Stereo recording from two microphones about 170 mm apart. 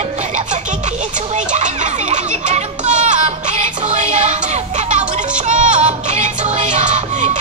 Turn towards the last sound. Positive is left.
turn(degrees=-45)  # may be behind; listen again after turning